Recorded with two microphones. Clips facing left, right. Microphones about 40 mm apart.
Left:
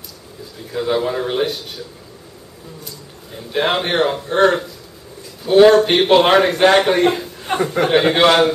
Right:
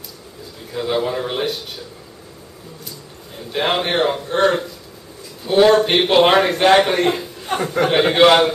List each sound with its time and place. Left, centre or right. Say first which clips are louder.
0.7 s a man's voice: left 2 dB; centre
3.5 s a man's voice: left 1 dB; centre